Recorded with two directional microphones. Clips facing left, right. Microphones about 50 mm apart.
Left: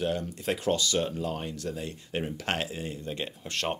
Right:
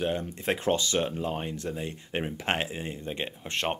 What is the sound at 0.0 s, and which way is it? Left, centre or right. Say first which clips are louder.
Speech: right 1 dB; right.